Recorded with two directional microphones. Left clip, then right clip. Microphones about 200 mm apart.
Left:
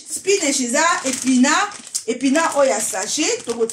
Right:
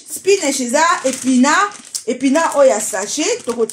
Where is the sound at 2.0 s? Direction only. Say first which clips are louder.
Right 3 dB; 35° right (ahead or behind).